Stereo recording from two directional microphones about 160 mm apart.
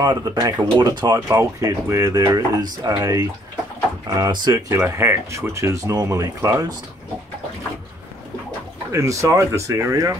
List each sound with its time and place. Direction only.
0.0 s speech: 25° right (ahead or behind)
8.9 s speech: 20° right (ahead or behind)